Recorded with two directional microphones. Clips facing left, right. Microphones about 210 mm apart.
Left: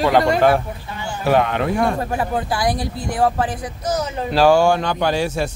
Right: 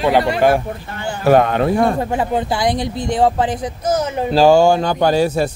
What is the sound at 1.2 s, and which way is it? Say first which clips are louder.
Speech: right 5 dB; 45° right (ahead or behind).